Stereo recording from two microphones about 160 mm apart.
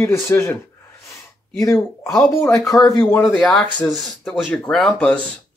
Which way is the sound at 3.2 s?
Centre (ahead or behind).